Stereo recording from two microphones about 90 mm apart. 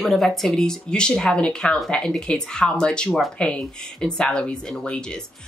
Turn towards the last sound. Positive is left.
turn(degrees=10)  # may be behind; listen again after turning